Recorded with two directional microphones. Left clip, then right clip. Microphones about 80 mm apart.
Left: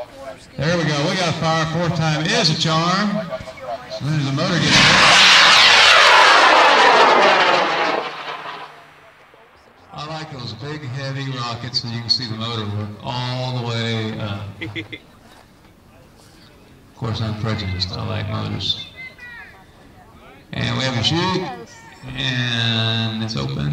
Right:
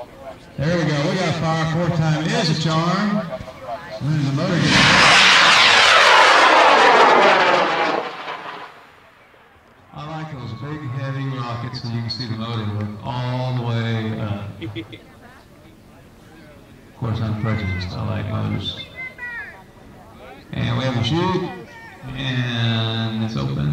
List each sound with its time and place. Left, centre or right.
0.6 s a man's voice: left
4.2 s a man's voice: left
4.6 s vehicle: centre
9.9 s a man's voice: left
17.0 s mantra: left
20.5 s a sound: left
22.0 s mantra: left